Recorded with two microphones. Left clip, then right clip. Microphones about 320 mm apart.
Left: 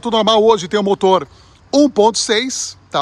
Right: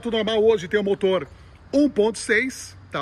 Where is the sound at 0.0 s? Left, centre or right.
Centre.